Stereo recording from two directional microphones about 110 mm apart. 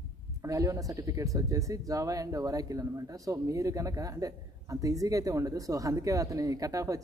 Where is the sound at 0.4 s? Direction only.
30° right (ahead or behind).